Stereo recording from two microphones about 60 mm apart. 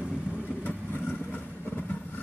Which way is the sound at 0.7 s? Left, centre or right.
Left.